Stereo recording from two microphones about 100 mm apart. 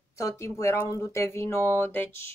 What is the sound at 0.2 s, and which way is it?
Speech, 30° left (ahead or behind).